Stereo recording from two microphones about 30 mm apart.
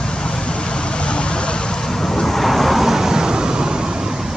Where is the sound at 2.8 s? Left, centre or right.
Centre.